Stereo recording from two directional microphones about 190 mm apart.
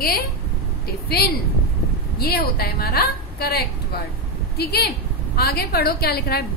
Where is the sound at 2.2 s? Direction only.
55° left (ahead or behind).